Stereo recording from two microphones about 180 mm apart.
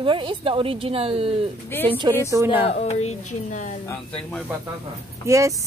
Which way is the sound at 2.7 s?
40° left (ahead or behind).